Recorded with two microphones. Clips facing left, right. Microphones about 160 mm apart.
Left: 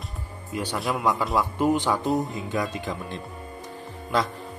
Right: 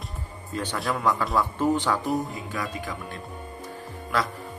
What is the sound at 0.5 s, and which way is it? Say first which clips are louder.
Speech: left 1 dB; 10° left (ahead or behind).